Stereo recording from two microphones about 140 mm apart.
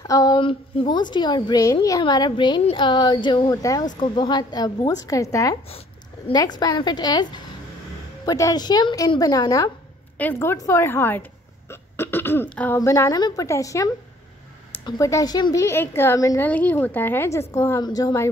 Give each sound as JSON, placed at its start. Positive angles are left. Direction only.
{"t": 0.0, "sound": "a sound", "side_deg": 25}
{"t": 0.4, "sound": "a woman's voice", "side_deg": 40}
{"t": 10.1, "sound": "a woman's voice", "side_deg": 15}
{"t": 14.9, "sound": "a woman's voice", "side_deg": 25}